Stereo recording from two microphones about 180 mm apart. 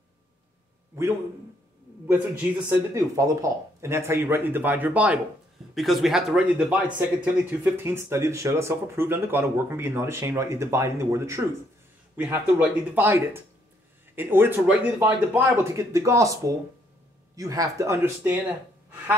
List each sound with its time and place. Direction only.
2.0 s speech: 10° right (ahead or behind)